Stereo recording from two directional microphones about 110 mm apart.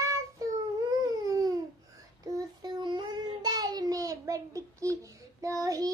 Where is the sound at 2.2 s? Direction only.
40° right (ahead or behind).